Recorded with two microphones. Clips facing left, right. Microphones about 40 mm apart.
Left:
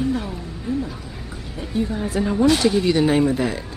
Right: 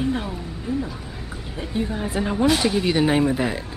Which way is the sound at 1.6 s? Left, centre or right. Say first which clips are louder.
Left 2 dB; centre.